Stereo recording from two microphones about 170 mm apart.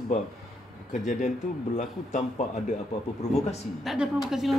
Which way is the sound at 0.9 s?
45° left (ahead or behind).